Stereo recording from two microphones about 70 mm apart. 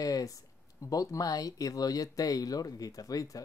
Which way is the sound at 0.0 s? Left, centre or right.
Left.